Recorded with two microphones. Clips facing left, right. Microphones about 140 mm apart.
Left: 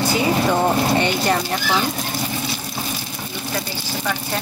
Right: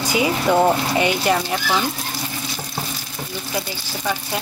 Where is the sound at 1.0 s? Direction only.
5° right (ahead or behind).